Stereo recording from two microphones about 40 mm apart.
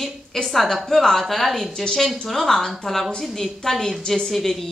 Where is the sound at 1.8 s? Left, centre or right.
Centre.